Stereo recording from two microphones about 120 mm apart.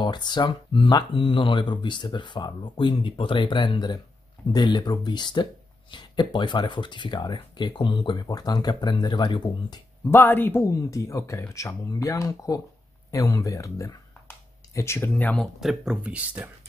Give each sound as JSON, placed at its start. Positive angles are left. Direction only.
{"t": 0.0, "sound": "speech", "side_deg": 35}
{"t": 10.1, "sound": "speech", "side_deg": 15}
{"t": 15.3, "sound": "speech", "side_deg": 0}